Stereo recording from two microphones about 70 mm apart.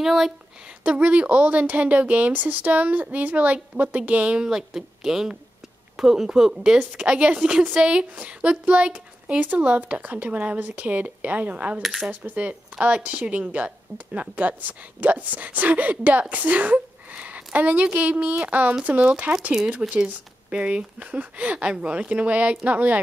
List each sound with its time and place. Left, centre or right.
0.0 s speech: centre
0.8 s speech: centre
11.8 s speech: centre
12.1 s speech: centre